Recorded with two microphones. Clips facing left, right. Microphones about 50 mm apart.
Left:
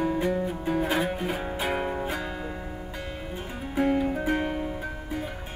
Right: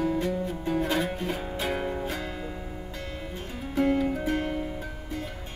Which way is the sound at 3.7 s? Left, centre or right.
Centre.